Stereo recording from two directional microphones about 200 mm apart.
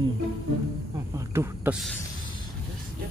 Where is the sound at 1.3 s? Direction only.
5° right (ahead or behind).